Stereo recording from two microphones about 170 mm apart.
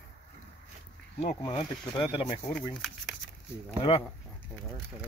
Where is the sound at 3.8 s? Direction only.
30° left (ahead or behind).